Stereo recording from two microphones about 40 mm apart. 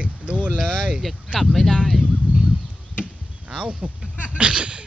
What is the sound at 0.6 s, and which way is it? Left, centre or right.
Vehicle, right.